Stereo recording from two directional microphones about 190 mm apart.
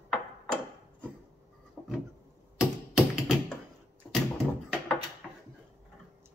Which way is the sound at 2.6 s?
Centre (ahead or behind).